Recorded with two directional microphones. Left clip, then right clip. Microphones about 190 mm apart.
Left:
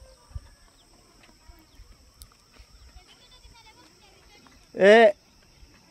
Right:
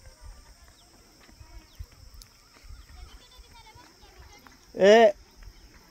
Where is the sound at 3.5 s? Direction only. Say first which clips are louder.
Right 3 dB; 65° left (ahead or behind).